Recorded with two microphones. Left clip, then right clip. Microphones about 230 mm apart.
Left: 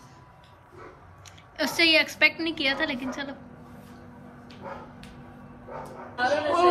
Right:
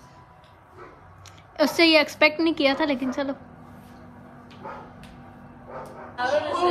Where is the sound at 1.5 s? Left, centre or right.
Right.